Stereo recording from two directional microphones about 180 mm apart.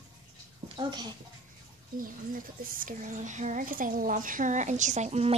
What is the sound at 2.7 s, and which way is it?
Speech, 50° right (ahead or behind).